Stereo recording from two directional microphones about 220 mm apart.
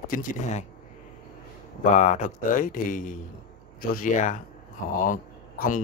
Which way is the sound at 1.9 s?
35° left (ahead or behind).